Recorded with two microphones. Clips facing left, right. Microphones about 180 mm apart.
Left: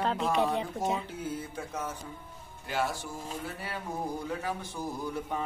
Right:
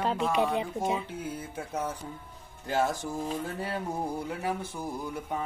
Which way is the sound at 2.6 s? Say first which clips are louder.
Right 4 dB; 45° right (ahead or behind).